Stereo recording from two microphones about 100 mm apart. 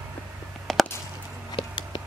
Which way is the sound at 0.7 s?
5° left (ahead or behind).